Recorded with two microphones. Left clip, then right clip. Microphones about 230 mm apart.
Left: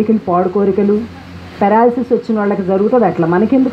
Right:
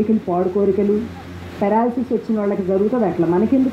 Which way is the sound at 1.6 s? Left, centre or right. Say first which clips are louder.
Left 7 dB; left.